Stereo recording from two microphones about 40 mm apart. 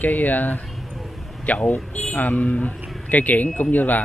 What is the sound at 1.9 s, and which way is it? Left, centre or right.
A man's voice, left.